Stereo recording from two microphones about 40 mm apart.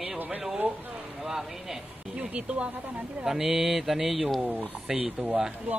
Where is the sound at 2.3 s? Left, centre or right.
Right.